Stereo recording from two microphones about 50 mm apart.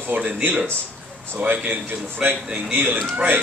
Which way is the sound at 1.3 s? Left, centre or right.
Right.